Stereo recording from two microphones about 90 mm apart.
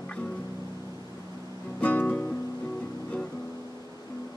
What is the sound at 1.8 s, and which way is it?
Music, 15° left (ahead or behind).